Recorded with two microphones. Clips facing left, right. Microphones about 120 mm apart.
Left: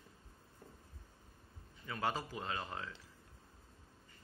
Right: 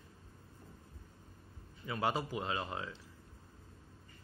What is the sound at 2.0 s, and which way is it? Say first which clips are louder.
Speech: right 3 dB; 15° right (ahead or behind).